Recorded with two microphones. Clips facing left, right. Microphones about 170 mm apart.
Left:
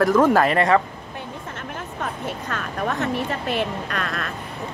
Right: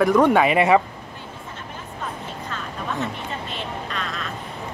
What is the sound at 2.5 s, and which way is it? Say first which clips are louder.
Speech: left 4 dB; 60° left (ahead or behind).